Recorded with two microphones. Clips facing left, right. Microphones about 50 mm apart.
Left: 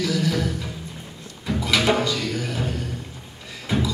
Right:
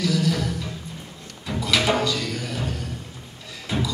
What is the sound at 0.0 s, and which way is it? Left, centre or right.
Music, centre.